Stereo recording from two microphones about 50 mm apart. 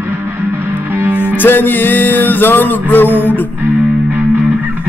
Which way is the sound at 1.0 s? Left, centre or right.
Right.